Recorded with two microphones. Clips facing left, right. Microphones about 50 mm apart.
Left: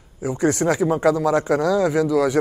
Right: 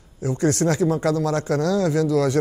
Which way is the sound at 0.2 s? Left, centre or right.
Centre.